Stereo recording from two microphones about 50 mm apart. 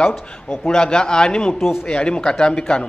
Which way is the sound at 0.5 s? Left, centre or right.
Centre.